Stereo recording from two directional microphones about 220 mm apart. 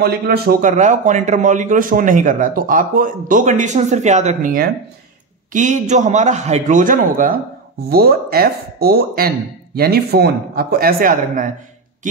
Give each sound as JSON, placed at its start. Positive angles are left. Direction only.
{"t": 0.0, "sound": "a man's voice", "side_deg": -45}